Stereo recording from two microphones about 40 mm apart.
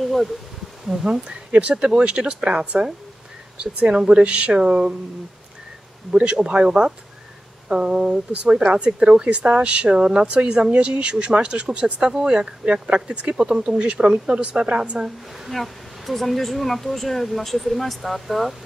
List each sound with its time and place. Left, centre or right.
0.0 s speech: centre
1.2 s speech: right
6.3 s speech: right
15.0 s speech: centre